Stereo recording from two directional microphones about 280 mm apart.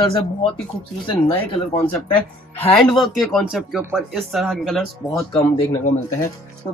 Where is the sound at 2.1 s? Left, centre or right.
Centre.